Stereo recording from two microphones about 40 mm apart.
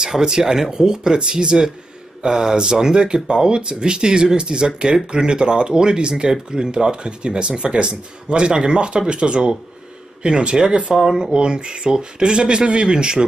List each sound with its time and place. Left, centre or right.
0.0 s speech: centre
11.0 s speech: centre
11.3 s speech: right